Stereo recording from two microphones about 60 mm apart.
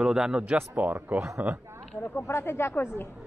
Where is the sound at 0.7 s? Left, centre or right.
Right.